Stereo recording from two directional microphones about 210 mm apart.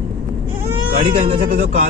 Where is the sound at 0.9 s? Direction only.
25° right (ahead or behind).